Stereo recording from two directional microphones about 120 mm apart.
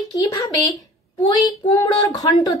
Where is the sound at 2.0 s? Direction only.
30° left (ahead or behind).